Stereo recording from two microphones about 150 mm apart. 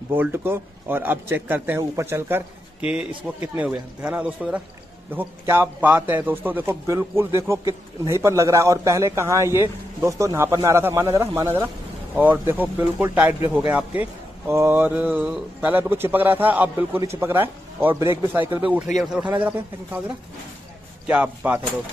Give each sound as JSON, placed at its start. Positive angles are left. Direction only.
{"t": 0.1, "sound": "a man's voice", "side_deg": -15}
{"t": 3.5, "sound": "a man's voice", "side_deg": -10}
{"t": 21.1, "sound": "a man's voice", "side_deg": -10}